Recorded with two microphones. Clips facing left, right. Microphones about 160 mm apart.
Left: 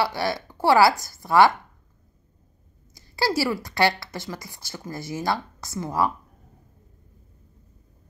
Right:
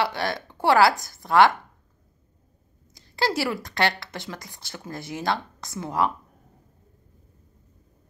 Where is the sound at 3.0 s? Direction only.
10° left (ahead or behind).